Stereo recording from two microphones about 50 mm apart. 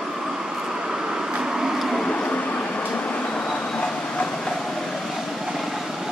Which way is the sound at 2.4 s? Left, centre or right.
Left.